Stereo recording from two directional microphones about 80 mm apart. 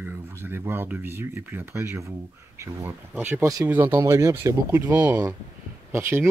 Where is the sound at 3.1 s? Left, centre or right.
Right.